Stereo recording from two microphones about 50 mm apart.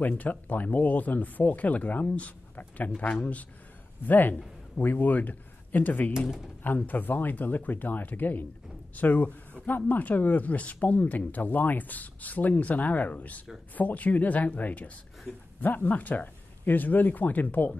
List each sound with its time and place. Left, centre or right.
0.0 s speech: left
4.0 s speech: left